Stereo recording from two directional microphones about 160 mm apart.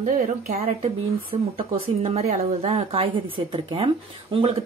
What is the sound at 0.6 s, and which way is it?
A woman's voice, 35° right (ahead or behind).